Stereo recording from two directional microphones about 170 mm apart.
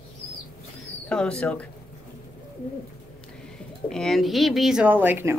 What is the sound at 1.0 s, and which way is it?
Speech, 5° left (ahead or behind).